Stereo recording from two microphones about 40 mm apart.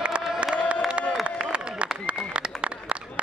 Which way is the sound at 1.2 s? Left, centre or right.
Right.